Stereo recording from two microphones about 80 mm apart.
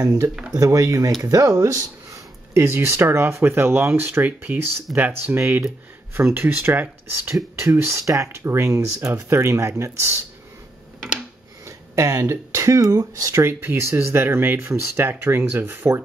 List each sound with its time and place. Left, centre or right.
0.0 s speech: right
1.6 s a sound: right
2.6 s speech: right
5.4 s speech: right
11.6 s speech: right